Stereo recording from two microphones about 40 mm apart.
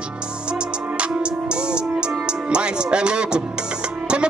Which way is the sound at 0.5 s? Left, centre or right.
Right.